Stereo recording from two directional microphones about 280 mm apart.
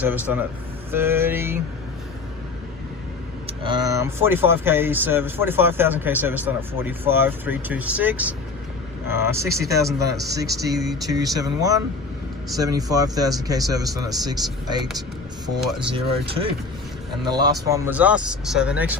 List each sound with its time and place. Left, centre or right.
0.0 s a man's voice: centre
3.6 s a man's voice: centre
15.9 s speech: centre